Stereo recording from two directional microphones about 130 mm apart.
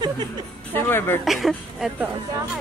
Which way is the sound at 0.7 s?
15° left (ahead or behind).